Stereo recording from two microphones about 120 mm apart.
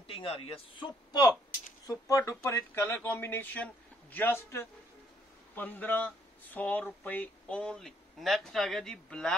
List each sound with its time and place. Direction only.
0.0 s a man's voice: 45° left (ahead or behind); by 9.3 s 5° left (ahead or behind)